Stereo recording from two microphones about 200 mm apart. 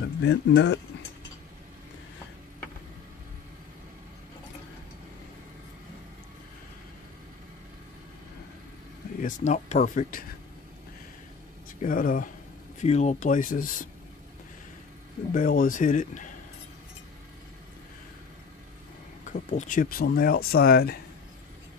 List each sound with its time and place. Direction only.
0.0 s speech: 60° left (ahead or behind)
9.2 s speech: 35° left (ahead or behind)
11.8 s speech: 45° left (ahead or behind)
12.8 s speech: 35° left (ahead or behind)
15.3 s speech: 45° left (ahead or behind)
19.3 s speech: 40° left (ahead or behind)